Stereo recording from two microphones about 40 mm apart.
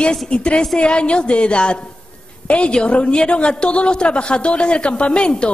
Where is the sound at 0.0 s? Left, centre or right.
Left.